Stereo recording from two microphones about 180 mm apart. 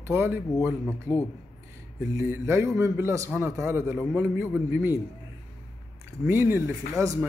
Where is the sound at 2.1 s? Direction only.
15° right (ahead or behind).